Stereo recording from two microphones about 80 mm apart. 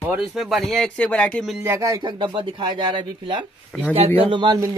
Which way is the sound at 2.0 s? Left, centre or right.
Right.